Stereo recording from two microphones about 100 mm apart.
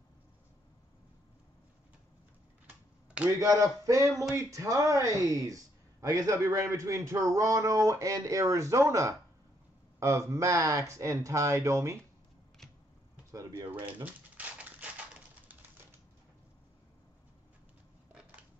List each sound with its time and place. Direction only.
3.3 s speech: 35° right (ahead or behind)
13.3 s speech: 35° right (ahead or behind)
14.0 s typewriter: 15° right (ahead or behind)